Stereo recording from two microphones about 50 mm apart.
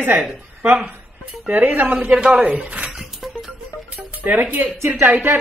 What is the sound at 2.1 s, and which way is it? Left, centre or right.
Speech, centre.